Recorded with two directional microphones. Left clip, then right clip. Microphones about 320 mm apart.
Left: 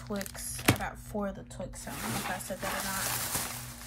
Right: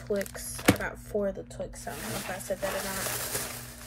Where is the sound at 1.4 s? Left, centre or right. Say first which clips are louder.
Right 4 dB; centre.